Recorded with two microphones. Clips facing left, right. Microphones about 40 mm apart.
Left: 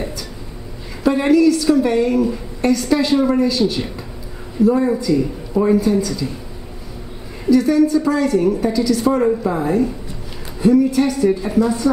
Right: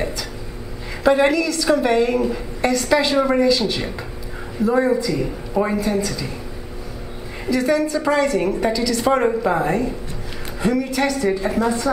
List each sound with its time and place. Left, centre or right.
1.0 s a woman's voice: right
3.3 s speech: right
4.6 s a woman's voice: right
7.5 s a woman's voice: right
8.7 s speech: right
9.0 s a woman's voice: right
10.6 s a woman's voice: right